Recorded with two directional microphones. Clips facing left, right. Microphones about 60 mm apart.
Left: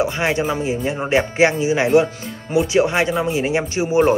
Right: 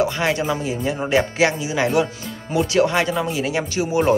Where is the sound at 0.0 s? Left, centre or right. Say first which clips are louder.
Left 1 dB; left.